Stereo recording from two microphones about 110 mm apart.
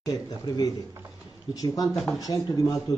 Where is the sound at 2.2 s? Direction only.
30° left (ahead or behind).